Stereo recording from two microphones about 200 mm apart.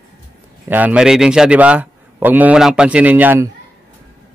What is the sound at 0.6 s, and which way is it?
A man's voice, 10° right (ahead or behind).